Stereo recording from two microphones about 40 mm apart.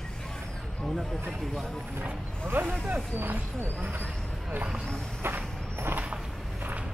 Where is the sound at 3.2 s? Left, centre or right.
Right.